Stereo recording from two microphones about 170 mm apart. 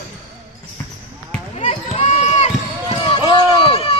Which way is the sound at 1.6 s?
35° left (ahead or behind).